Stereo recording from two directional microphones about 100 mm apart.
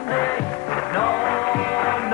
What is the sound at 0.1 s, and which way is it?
Music, 20° left (ahead or behind).